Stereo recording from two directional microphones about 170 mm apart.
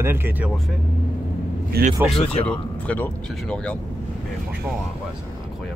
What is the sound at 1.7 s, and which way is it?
Speech, 60° right (ahead or behind).